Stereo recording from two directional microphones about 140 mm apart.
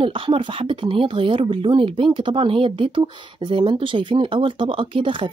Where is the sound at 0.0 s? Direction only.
40° right (ahead or behind).